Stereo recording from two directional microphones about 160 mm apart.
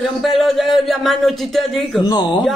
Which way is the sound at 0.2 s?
Centre (ahead or behind).